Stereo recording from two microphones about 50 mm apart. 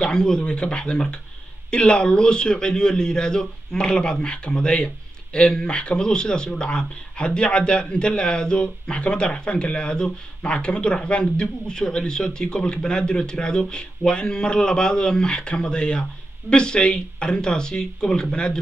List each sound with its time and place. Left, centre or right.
0.0 s a man's voice: centre